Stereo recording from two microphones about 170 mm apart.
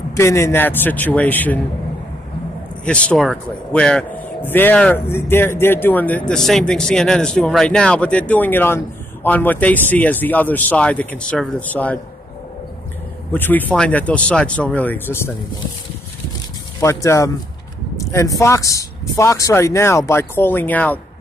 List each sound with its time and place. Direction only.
0.1 s a man's voice: 15° left (ahead or behind)
2.8 s a man's voice: 10° left (ahead or behind)
13.3 s a man's voice: 10° left (ahead or behind)
16.8 s a man's voice: 20° left (ahead or behind)